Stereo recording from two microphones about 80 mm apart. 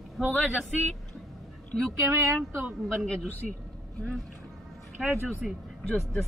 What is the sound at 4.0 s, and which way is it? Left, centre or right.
Speech, centre.